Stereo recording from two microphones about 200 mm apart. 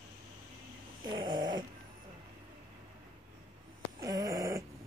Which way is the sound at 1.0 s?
20° right (ahead or behind).